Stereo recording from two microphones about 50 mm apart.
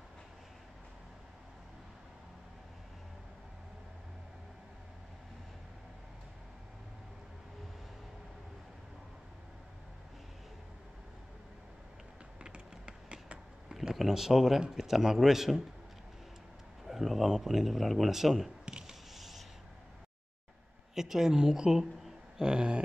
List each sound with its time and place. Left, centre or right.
12.4 s typing: right
13.9 s a man's voice: centre
16.8 s a man's voice: centre
18.7 s a sound: centre
19.1 s rub: centre
20.9 s speech: centre